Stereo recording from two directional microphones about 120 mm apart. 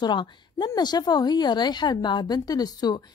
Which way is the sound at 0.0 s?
40° left (ahead or behind).